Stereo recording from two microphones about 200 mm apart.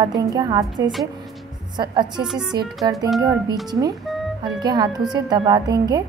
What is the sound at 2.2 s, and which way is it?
Speech, centre (ahead or behind).